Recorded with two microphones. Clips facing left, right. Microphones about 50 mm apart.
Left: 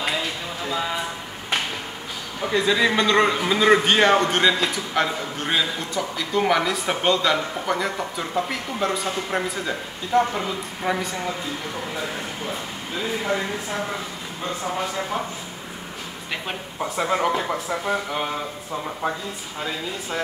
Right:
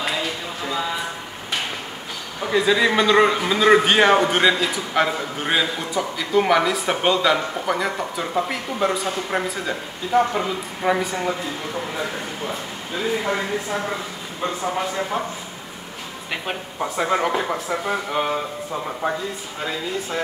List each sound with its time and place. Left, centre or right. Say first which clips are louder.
2.4 s a man's voice: right 2 dB; centre
12.9 s speech: right 2 dB; centre
16.8 s speech: right 1 dB; centre